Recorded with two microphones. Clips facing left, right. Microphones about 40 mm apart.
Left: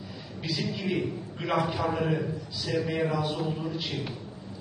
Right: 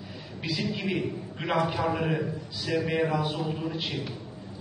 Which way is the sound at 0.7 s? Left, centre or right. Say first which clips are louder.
Even; centre.